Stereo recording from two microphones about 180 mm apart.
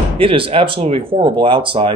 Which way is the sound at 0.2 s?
30° right (ahead or behind).